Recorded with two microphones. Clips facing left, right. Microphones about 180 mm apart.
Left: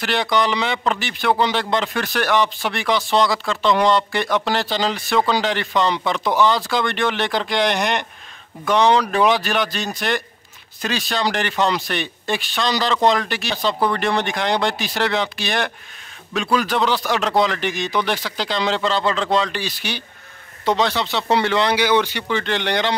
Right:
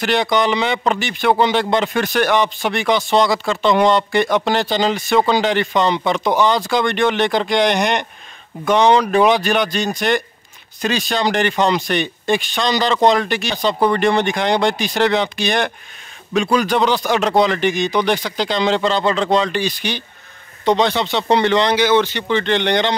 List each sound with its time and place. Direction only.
0.0 s speech: centre (ahead or behind)